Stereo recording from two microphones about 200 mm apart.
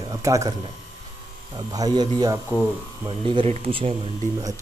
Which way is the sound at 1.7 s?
20° right (ahead or behind).